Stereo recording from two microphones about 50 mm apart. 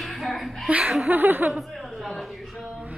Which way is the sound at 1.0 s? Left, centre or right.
Right.